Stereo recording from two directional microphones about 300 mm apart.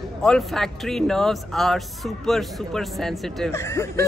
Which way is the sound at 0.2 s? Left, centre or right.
Centre.